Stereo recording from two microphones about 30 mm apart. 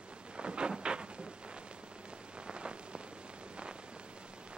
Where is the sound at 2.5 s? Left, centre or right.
Right.